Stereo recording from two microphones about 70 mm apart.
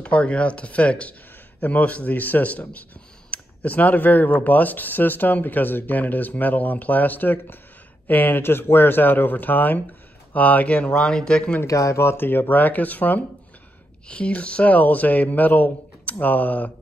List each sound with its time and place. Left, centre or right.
0.0 s speech: centre
11.6 s speech: left